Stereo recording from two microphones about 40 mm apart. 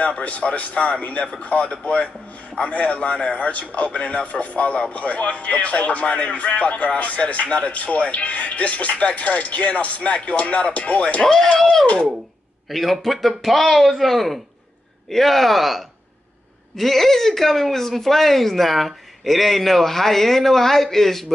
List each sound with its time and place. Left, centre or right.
0.2 s a man's voice: left
12.6 s speech: centre